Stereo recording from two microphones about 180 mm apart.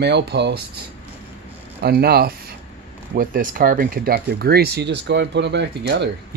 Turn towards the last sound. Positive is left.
turn(degrees=-80)